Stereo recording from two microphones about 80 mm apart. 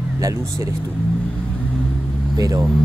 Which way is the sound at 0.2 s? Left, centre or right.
Right.